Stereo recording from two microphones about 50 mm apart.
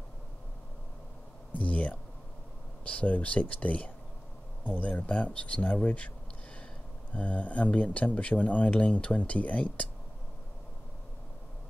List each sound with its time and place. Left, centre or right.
1.5 s a sound: left
2.8 s speech: left
7.2 s speech: left